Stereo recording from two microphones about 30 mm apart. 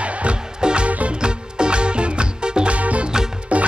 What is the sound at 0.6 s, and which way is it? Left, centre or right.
Music, right.